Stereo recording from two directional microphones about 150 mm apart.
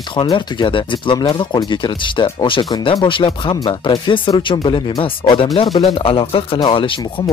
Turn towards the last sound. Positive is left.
turn(degrees=35)  # may be behind; listen again after turning